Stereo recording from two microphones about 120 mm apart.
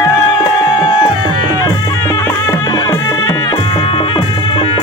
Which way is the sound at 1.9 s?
25° left (ahead or behind).